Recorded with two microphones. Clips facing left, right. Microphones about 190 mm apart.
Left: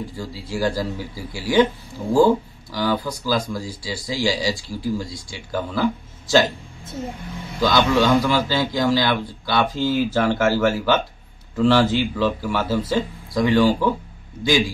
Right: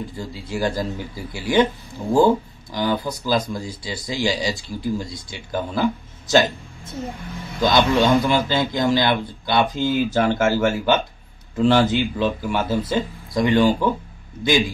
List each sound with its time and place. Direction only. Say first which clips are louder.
0.2 s speech: left 1 dB; 20° right (ahead or behind)
7.6 s speech: even; 20° right (ahead or behind)